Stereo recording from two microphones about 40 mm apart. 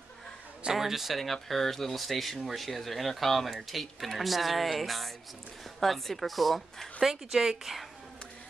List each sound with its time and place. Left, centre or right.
0.7 s speech: centre
7.2 s speech: centre